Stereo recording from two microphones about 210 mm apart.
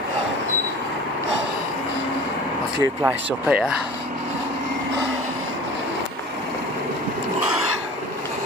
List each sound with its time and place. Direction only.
2.8 s speech: 15° right (ahead or behind)
3.4 s speech: 5° right (ahead or behind)